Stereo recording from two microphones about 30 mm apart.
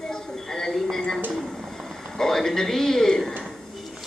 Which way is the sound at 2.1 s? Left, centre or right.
Centre.